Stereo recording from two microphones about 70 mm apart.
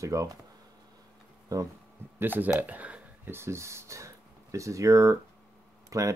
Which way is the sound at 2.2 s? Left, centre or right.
Right.